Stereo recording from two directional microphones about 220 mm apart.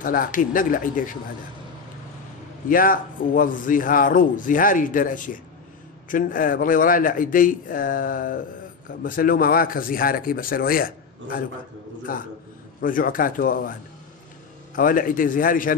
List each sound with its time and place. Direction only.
0.0 s a man's voice: 40° left (ahead or behind)
2.7 s a man's voice: 40° left (ahead or behind)
12.1 s a man's voice: 40° left (ahead or behind)
14.8 s a man's voice: 40° left (ahead or behind)